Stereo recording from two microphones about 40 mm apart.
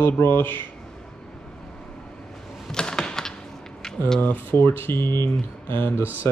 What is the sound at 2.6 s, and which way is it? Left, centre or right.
Typewriter, centre.